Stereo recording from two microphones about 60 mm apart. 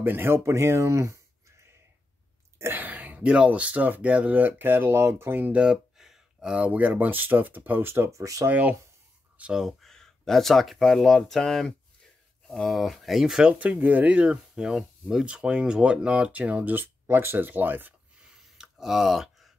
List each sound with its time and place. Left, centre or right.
0.0 s speech: right
2.6 s speech: right
5.5 s a sound: centre
6.7 s speech: right
8.1 s speech: right
8.5 s speech: right
9.4 s speech: centre
9.8 s speech: centre; by 16.9 s right
17.0 s speech: right
18.2 s a sound: centre